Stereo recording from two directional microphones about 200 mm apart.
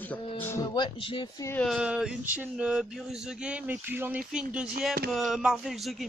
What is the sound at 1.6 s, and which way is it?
Male singing, 5° right (ahead or behind).